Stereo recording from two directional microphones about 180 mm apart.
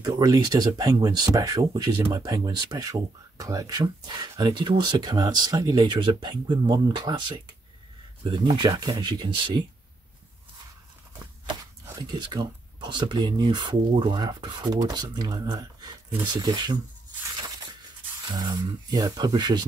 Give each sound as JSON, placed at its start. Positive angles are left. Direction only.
{"t": 0.0, "sound": "speech", "side_deg": -25}
{"t": 11.4, "sound": "speech", "side_deg": -25}
{"t": 18.3, "sound": "speech", "side_deg": -20}